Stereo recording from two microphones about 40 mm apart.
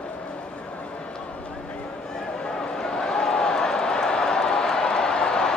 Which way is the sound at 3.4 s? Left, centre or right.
Centre.